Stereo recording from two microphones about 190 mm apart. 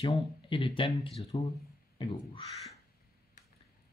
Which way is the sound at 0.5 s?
25° left (ahead or behind).